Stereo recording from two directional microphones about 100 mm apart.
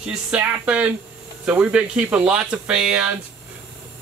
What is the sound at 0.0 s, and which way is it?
Speech, 10° right (ahead or behind).